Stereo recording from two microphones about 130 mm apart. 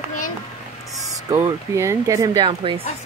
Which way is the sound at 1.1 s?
25° right (ahead or behind).